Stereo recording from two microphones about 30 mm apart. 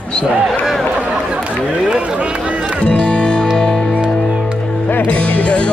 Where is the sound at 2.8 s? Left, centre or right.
Left.